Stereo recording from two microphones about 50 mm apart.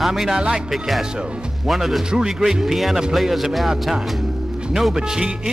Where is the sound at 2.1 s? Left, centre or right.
Centre.